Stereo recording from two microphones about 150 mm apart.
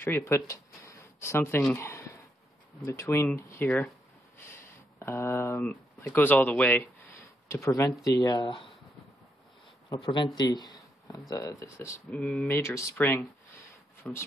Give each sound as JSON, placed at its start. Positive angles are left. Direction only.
{"t": 0.0, "sound": "a sound", "side_deg": 15}
{"t": 2.8, "sound": "speech", "side_deg": 15}
{"t": 10.0, "sound": "speech", "side_deg": 25}
{"t": 12.1, "sound": "speech", "side_deg": 5}
{"t": 12.5, "sound": "speech", "side_deg": 20}